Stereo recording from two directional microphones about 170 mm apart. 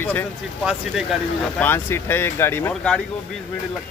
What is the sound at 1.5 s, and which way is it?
Speech, 10° left (ahead or behind).